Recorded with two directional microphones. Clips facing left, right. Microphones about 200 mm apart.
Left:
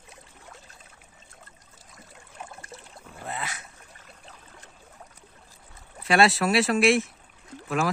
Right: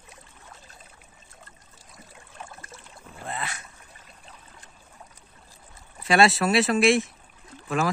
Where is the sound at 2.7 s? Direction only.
35° left (ahead or behind).